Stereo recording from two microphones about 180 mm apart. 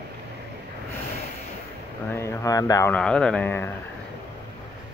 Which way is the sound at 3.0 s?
5° left (ahead or behind).